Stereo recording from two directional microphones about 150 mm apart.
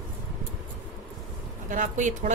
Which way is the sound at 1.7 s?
55° right (ahead or behind).